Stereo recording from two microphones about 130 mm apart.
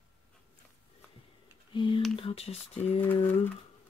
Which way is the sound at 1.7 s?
40° left (ahead or behind).